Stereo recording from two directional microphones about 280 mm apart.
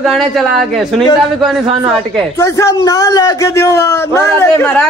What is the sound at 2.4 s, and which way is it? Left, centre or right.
A man's voice, centre.